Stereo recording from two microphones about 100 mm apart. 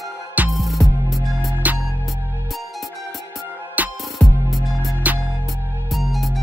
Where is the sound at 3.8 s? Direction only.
15° right (ahead or behind).